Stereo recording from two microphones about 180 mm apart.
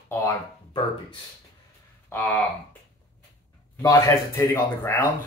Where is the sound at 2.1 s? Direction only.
10° left (ahead or behind).